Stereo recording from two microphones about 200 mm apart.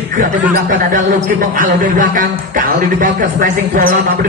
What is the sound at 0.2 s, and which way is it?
A man's voice, 45° right (ahead or behind).